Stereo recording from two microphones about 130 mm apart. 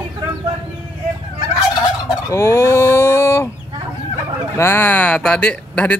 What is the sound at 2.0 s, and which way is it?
Fowl, 20° left (ahead or behind).